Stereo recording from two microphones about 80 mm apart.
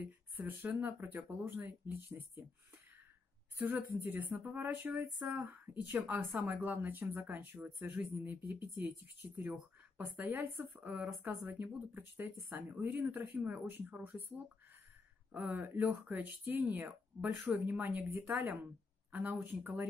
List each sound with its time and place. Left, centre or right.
0.0 s speech: right
3.5 s speech: right
5.5 s speech: centre